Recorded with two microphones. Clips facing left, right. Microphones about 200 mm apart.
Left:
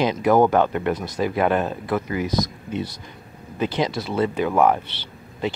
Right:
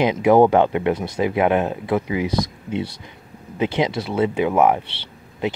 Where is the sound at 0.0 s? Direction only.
20° right (ahead or behind).